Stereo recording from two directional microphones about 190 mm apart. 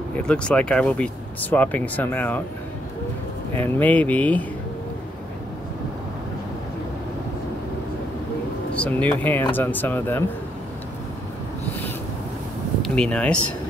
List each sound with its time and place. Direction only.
0.2 s speech: 5° left (ahead or behind)
3.5 s speech: 10° left (ahead or behind)
8.7 s speech: 5° left (ahead or behind)
12.8 s speech: 5° left (ahead or behind)